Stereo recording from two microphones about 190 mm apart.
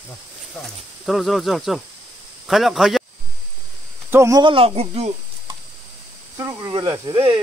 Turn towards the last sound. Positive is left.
turn(degrees=-25)  # may be behind; listen again after turning